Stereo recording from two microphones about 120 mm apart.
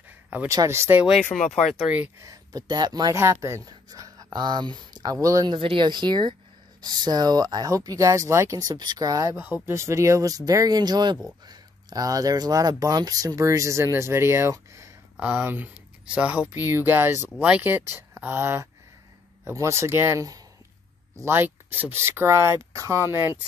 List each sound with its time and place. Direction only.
0.5 s speech: 25° right (ahead or behind)
1.3 s speech: 5° left (ahead or behind)
2.1 s speech: 30° right (ahead or behind)
5.5 s speech: 45° right (ahead or behind); by 23.3 s 20° right (ahead or behind)